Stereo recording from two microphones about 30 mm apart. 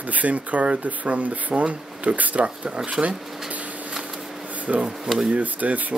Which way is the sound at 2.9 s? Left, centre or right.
Right.